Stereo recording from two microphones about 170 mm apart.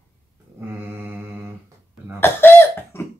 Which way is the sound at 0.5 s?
15° right (ahead or behind).